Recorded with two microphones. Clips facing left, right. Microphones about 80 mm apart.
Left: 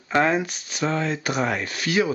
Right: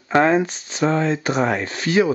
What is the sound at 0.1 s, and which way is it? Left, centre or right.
Speech, right.